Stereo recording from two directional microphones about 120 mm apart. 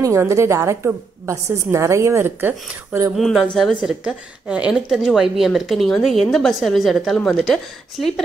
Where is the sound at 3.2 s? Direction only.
Centre (ahead or behind).